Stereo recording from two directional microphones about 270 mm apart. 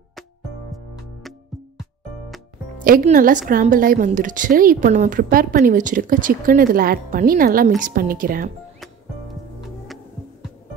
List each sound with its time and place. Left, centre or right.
2.8 s a woman's voice: right